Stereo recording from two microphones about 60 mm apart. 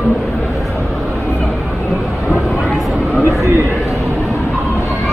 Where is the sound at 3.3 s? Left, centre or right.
Right.